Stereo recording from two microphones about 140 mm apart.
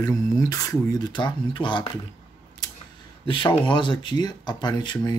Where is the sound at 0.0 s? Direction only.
25° left (ahead or behind).